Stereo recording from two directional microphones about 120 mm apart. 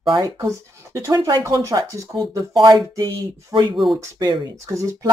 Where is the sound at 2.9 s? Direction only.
30° right (ahead or behind).